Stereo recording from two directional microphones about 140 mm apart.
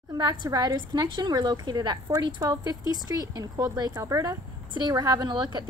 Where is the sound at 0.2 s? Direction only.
30° right (ahead or behind).